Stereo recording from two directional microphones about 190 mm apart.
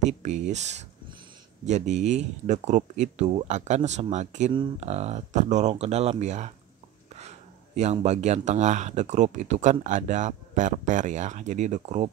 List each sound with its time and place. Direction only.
0.0 s speech: 40° right (ahead or behind)